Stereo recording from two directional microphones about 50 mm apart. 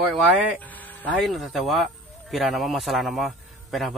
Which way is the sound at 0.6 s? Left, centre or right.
Left.